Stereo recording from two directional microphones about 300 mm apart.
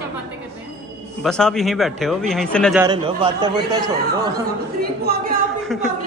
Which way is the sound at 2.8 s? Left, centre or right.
Centre.